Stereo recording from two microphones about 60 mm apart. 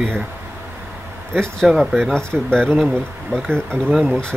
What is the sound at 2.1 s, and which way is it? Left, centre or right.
Speech, centre.